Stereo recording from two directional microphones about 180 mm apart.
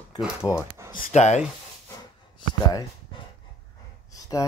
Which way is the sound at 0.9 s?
45° left (ahead or behind).